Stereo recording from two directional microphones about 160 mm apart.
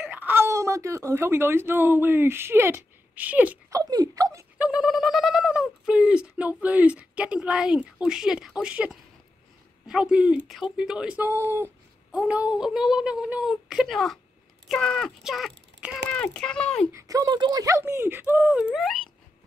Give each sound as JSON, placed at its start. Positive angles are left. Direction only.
{"t": 0.1, "sound": "a woman's voice", "side_deg": -15}
{"t": 3.7, "sound": "speech", "side_deg": -25}
{"t": 4.6, "sound": "speech", "side_deg": -5}
{"t": 16.9, "sound": "speech", "side_deg": -20}